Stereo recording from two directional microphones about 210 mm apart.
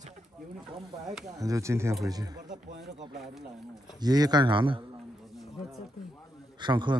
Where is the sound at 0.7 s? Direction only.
25° right (ahead or behind).